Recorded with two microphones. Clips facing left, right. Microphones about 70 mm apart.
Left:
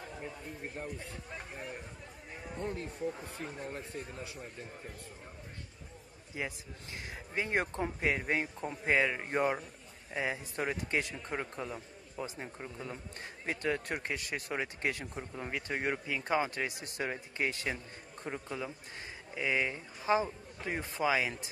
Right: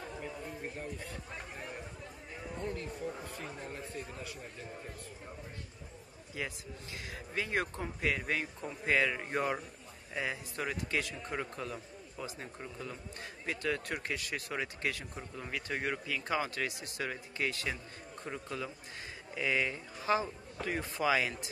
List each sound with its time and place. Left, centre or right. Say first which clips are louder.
2.7 s a man's voice: left 2 dB; left
6.4 s a man's voice: left 1 dB; centre
12.9 s a man's voice: even; left